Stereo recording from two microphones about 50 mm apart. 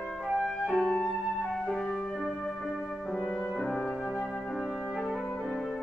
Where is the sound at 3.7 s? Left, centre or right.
Centre.